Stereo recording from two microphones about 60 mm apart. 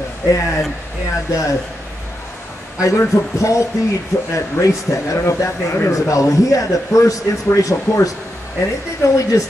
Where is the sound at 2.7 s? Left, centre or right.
Left.